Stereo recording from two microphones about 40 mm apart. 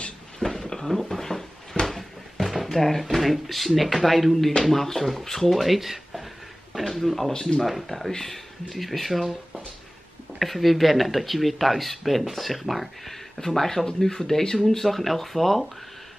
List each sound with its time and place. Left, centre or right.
0.5 s a sound: centre
1.9 s speech: centre
7.3 s speech: centre
7.6 s speech: centre
8.6 s speech: centre
10.4 s speech: centre